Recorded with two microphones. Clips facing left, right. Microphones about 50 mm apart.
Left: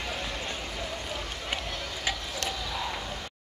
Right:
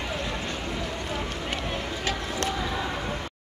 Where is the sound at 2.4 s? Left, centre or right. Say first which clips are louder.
Right 5 dB; right.